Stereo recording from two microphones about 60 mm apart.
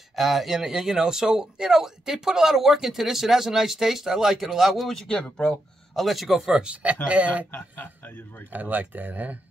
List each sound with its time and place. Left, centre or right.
0.1 s speech: centre
5.9 s speech: centre; by 7.4 s right
7.5 s speech: left
8.5 s speech: right